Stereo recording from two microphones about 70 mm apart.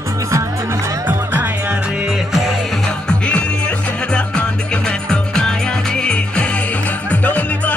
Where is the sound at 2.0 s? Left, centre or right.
Centre.